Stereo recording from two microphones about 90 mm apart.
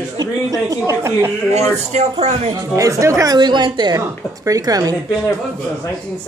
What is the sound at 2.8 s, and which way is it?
Speech, 35° right (ahead or behind).